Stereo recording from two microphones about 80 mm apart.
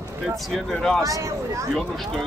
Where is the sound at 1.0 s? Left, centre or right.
Right.